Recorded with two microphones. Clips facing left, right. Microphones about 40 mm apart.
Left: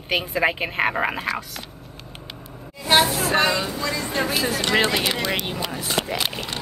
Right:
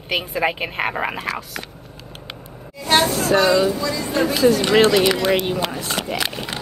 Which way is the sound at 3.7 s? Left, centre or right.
Left.